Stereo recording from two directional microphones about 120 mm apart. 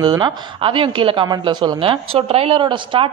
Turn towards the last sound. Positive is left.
turn(degrees=-45)  # may be behind; listen again after turning